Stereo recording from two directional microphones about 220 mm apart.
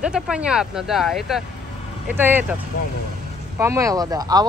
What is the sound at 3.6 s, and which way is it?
Speech, 15° right (ahead or behind).